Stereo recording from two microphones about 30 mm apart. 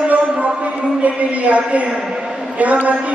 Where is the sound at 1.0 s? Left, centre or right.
Right.